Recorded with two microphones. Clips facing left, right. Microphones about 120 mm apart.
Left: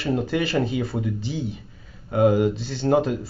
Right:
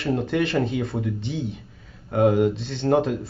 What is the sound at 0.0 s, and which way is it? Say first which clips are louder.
Speech: even; centre (ahead or behind).